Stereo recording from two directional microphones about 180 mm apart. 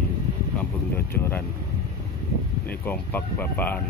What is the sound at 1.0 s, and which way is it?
Speech, 10° left (ahead or behind).